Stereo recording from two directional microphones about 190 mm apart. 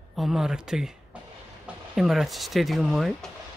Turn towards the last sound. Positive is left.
turn(degrees=0)  # may be behind; listen again after turning